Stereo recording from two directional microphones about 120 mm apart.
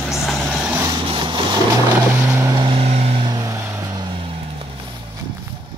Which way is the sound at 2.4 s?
25° right (ahead or behind).